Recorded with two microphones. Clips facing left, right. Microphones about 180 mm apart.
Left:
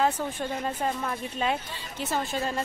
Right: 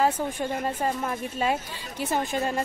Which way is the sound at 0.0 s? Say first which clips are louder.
Right 2 dB; 10° right (ahead or behind).